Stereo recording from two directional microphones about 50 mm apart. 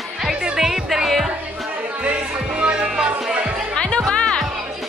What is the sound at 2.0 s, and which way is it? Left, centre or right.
Music, right.